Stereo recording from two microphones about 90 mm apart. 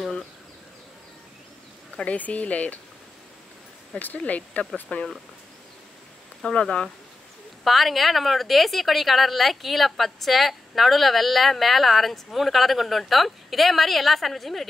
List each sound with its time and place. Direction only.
2.0 s speech: 15° left (ahead or behind)
3.9 s speech: 15° left (ahead or behind)
6.4 s a woman's voice: 10° left (ahead or behind)